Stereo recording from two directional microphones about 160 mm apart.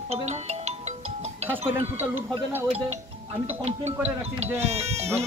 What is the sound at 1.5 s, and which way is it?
Speech, 15° right (ahead or behind).